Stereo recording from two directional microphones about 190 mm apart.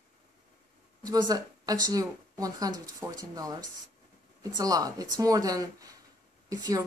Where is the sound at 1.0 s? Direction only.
20° right (ahead or behind).